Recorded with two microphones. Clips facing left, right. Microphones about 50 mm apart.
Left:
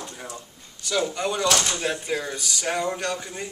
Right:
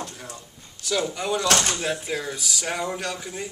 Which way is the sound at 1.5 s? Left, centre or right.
Right.